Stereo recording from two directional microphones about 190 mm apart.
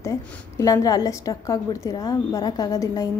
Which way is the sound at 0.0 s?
15° left (ahead or behind).